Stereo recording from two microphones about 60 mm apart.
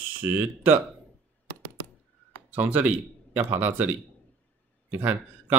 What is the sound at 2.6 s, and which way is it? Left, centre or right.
A man's voice, right.